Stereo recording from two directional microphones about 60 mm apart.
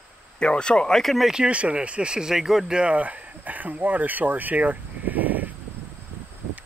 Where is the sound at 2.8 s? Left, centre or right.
Right.